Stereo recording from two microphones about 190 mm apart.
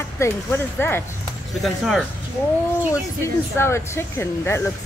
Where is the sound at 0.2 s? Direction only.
10° left (ahead or behind).